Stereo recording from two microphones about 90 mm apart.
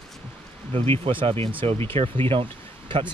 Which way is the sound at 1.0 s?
80° right.